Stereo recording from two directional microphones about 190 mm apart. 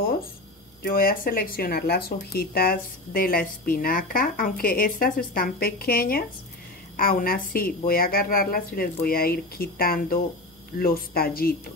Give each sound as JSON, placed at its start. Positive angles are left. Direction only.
{"t": 0.8, "sound": "speech", "side_deg": 50}